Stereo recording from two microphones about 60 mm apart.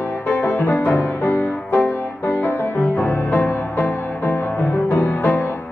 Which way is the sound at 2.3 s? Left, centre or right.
Left.